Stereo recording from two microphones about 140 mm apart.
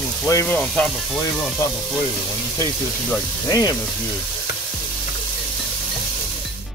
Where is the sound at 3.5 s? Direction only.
25° left (ahead or behind).